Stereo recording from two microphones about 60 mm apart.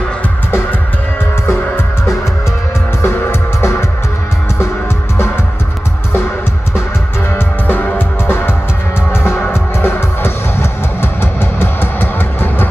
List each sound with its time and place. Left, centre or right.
0.5 s music: left
3.0 s music: left
7.3 s music: left